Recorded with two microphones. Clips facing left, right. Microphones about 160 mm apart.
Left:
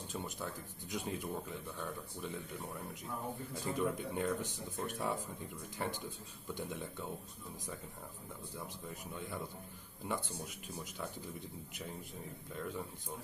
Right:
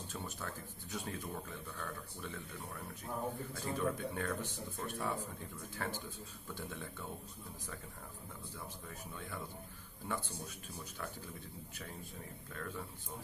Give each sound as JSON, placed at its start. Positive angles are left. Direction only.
{"t": 0.1, "sound": "speech", "side_deg": 15}
{"t": 8.5, "sound": "speech", "side_deg": 15}
{"t": 12.5, "sound": "speech", "side_deg": 15}